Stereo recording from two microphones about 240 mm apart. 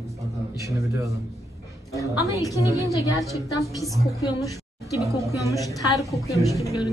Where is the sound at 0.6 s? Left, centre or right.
Centre.